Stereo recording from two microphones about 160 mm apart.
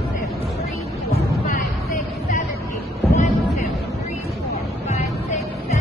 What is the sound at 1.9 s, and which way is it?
Music, 50° left (ahead or behind).